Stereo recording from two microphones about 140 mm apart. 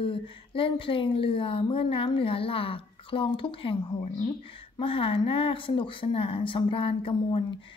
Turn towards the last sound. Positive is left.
turn(degrees=40)  # may be behind; listen again after turning